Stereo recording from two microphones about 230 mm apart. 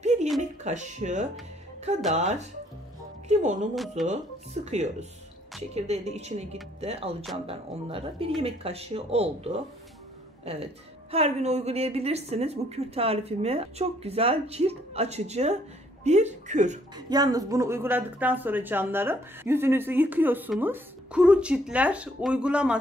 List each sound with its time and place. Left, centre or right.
0.0 s a sound: right
0.4 s a woman's voice: right
3.7 s speech: centre
4.6 s a woman's voice: right
16.9 s speech: centre